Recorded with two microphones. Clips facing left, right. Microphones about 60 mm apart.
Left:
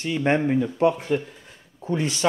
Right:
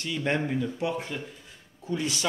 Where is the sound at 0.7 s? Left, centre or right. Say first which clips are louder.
Left 10 dB; left.